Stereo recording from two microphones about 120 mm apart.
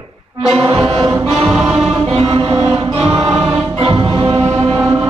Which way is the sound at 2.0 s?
50° right (ahead or behind).